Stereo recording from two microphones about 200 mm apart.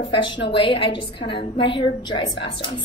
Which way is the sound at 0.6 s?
25° left (ahead or behind).